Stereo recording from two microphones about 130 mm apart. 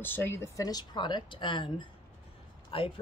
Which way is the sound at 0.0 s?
15° left (ahead or behind).